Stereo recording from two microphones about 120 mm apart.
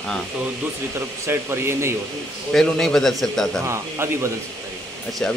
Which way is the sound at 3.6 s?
20° right (ahead or behind).